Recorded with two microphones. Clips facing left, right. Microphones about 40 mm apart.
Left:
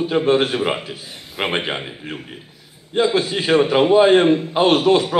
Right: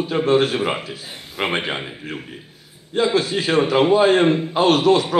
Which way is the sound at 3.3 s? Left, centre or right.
Left.